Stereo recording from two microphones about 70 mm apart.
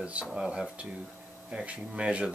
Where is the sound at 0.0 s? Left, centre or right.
Centre.